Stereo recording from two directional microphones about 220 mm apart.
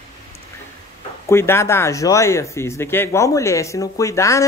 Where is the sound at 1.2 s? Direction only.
10° left (ahead or behind).